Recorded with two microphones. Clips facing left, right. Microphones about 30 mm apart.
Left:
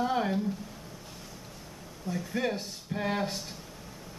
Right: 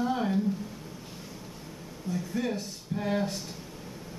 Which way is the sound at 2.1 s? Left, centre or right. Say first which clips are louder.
Even; left.